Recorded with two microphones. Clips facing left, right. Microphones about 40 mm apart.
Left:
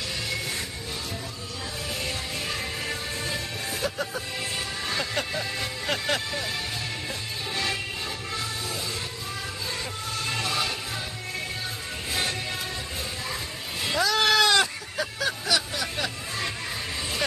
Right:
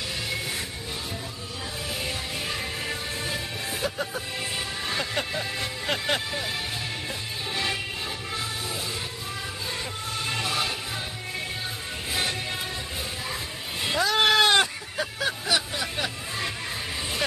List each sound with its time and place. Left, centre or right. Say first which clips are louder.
2.0 s music: even; centre
10.1 s music: even; centre
12.1 s music: even; centre
14.0 s goat: right 1 dB; centre
14.6 s hubbub: even; centre